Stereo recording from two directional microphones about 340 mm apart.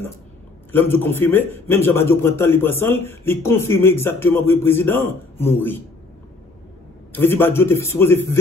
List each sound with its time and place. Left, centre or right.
0.7 s a man's voice: centre
7.1 s a man's voice: centre